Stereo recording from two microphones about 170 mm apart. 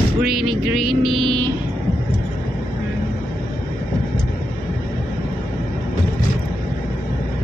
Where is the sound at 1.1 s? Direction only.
30° right (ahead or behind).